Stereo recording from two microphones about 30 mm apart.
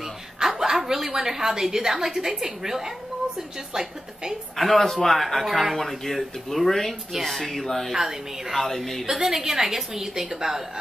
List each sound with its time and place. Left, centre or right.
0.4 s a woman's voice: centre
4.6 s speech: centre
7.9 s a woman's voice: centre
8.5 s speech: centre
9.1 s a woman's voice: centre